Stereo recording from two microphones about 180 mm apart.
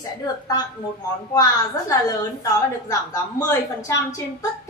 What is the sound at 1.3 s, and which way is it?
Speech, 20° left (ahead or behind).